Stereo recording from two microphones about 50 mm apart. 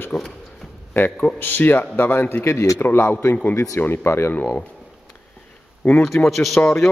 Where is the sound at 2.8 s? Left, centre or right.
Left.